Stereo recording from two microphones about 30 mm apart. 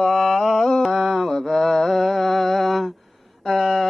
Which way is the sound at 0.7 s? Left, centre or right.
Centre.